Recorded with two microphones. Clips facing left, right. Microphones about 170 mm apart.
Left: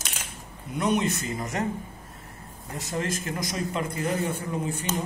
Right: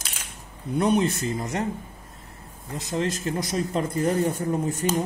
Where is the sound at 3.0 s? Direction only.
35° right (ahead or behind).